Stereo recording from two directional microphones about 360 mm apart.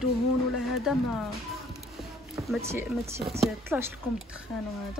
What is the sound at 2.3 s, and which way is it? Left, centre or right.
Speech, centre.